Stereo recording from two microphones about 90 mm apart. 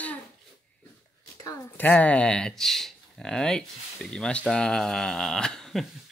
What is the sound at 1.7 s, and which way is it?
Speech, 20° left (ahead or behind).